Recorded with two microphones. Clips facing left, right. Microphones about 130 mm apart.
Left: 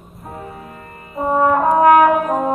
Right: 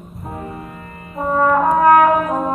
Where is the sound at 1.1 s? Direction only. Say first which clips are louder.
Even; 20° left (ahead or behind).